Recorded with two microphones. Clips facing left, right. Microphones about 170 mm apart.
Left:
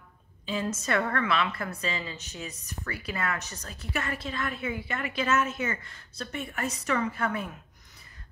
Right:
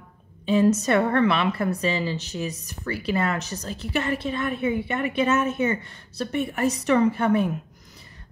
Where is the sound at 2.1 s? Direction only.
80° right.